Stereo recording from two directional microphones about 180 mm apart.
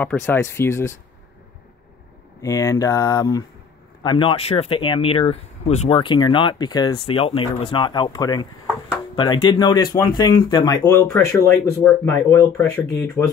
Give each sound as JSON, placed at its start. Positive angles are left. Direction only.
{"t": 0.0, "sound": "speech", "side_deg": 10}
{"t": 2.4, "sound": "speech", "side_deg": 20}